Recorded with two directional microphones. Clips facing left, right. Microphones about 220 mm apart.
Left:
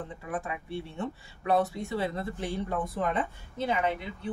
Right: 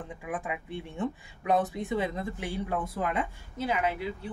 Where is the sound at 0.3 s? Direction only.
15° right (ahead or behind).